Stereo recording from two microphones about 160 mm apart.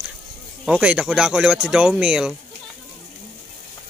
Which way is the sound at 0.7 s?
5° right (ahead or behind).